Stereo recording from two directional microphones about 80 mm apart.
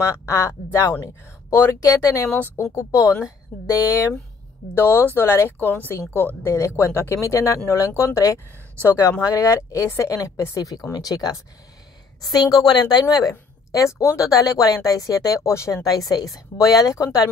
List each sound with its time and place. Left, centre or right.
0.0 s speech: left
2.3 s speech: left
2.6 s speech: left
3.5 s speech: centre
4.7 s a woman's voice: left
13.3 s a woman's voice: left